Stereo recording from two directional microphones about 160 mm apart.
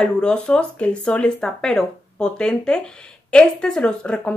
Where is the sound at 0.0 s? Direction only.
5° left (ahead or behind).